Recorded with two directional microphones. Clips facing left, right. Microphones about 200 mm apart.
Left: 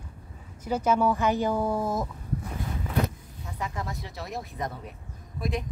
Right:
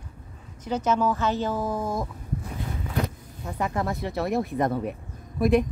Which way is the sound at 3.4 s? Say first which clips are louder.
Right 7 dB; 55° right (ahead or behind).